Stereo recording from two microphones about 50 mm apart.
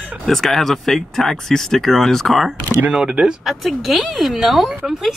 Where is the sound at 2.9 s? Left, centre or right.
Centre.